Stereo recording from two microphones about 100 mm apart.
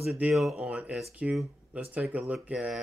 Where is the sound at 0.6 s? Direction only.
15° right (ahead or behind).